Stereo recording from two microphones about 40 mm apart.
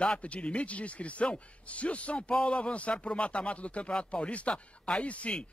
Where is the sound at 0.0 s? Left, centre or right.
Left.